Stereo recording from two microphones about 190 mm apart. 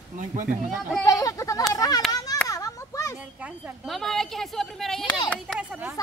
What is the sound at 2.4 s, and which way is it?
Children playing, 20° left (ahead or behind).